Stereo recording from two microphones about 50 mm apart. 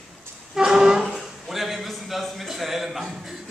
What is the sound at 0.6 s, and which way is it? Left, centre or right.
Music, centre.